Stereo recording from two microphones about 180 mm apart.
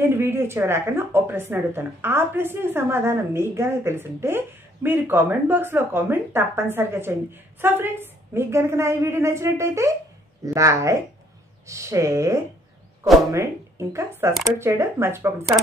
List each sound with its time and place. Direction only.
0.0 s a woman's voice: 15° right (ahead or behind)